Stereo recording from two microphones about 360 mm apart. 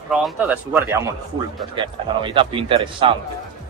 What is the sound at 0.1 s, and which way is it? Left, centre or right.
Speech, centre.